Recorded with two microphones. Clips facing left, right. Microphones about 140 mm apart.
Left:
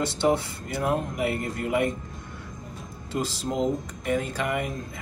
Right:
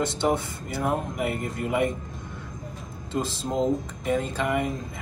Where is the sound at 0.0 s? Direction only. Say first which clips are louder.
Left 1 dB; 20° right (ahead or behind).